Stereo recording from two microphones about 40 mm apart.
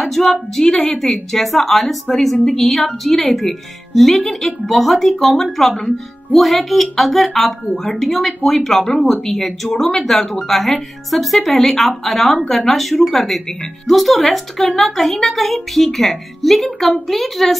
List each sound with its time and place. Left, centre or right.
0.0 s a woman's voice: centre
7.6 s speech: left
8.0 s a woman's voice: centre